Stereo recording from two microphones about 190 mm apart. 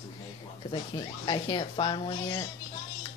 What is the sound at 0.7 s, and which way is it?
Speech, 20° left (ahead or behind).